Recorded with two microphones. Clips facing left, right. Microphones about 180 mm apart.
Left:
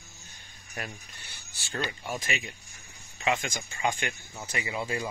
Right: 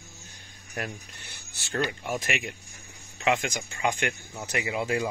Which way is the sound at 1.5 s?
75° right (ahead or behind).